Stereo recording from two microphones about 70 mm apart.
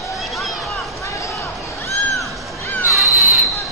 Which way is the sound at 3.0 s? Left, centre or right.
Centre.